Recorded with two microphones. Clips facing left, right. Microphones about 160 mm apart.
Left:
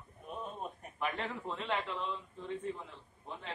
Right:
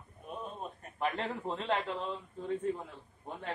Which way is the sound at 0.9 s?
35° right (ahead or behind).